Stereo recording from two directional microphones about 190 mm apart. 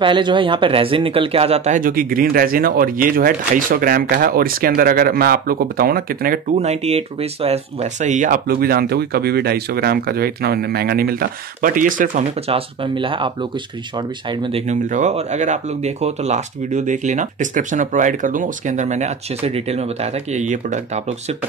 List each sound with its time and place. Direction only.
0.0 s speech: 25° right (ahead or behind); by 12.3 s 45° right (ahead or behind)
12.4 s speech: 30° right (ahead or behind)
14.4 s speech: 35° right (ahead or behind)